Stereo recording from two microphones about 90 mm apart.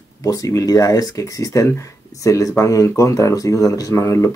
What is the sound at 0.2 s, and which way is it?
Speech, 40° left (ahead or behind).